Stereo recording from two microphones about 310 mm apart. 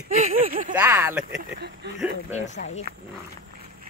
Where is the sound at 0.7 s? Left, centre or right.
Centre.